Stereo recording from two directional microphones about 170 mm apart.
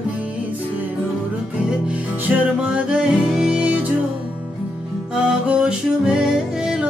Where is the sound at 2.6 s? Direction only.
5° right (ahead or behind).